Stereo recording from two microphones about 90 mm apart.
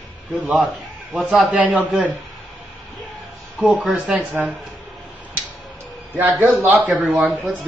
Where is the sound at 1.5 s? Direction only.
15° right (ahead or behind).